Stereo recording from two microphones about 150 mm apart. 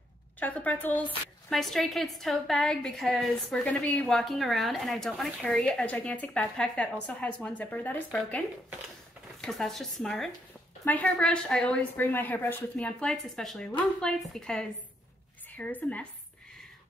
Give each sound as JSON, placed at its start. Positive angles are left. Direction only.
{"t": 0.4, "sound": "a woman's voice", "side_deg": 10}
{"t": 1.5, "sound": "a woman's voice", "side_deg": 0}